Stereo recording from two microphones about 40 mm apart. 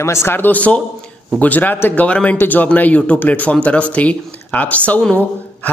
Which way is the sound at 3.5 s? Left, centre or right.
Left.